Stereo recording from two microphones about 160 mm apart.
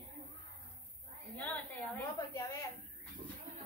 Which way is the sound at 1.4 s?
15° left (ahead or behind).